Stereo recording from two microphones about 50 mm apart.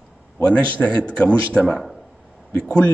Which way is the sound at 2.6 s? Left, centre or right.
Left.